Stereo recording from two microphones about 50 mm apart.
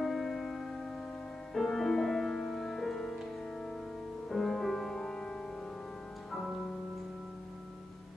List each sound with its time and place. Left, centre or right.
0.0 s music: centre
4.3 s music: centre